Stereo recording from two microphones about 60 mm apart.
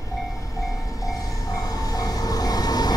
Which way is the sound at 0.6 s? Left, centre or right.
Left.